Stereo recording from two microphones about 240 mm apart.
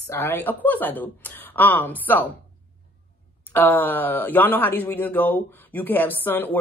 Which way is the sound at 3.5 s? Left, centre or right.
Centre.